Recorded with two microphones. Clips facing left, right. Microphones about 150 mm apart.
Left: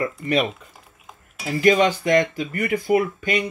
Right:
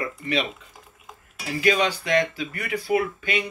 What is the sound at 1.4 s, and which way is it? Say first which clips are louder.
Speech: left 5 dB; 45° left (ahead or behind).